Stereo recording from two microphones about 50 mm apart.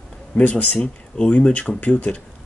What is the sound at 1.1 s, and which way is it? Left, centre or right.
Speech, left.